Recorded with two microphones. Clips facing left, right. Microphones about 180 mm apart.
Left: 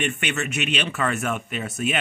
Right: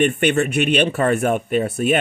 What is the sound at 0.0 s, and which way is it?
Speech, 50° right (ahead or behind).